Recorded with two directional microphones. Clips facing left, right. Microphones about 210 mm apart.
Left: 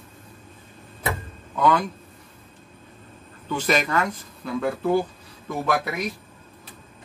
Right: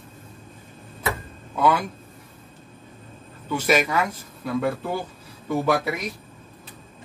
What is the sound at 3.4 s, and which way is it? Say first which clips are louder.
Speech: right 2 dB; 10° right (ahead or behind).